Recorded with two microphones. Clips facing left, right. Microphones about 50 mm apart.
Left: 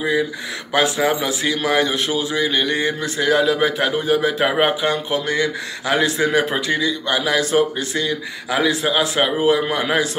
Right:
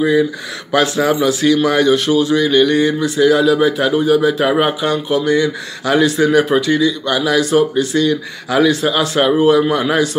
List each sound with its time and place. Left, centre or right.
0.7 s a man's voice: centre
3.0 s a man's voice: left